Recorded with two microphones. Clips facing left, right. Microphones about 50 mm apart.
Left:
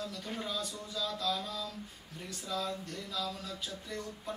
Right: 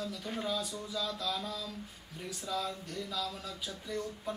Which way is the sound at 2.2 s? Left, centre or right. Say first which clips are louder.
Right 1 dB; centre.